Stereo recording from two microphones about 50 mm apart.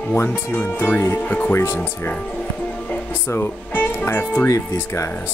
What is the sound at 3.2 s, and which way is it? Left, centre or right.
Speech, left.